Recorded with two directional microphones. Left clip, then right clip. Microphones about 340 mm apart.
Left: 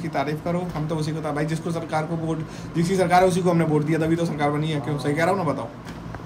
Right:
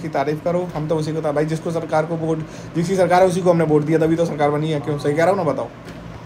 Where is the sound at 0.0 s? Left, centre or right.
Centre.